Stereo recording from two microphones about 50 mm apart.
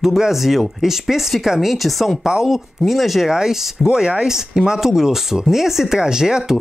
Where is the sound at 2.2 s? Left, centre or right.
Centre.